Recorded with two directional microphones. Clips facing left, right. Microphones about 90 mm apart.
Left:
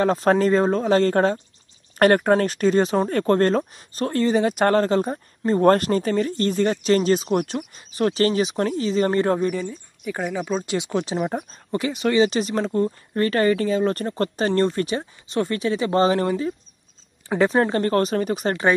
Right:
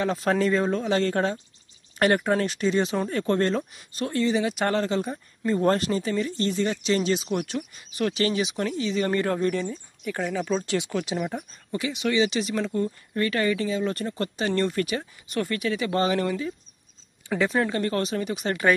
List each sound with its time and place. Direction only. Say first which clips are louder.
0.0 s speech: left 5 dB; 40° left (ahead or behind)
9.4 s speech: left 1 dB; 10° left (ahead or behind); by 18.6 s 40° left (ahead or behind)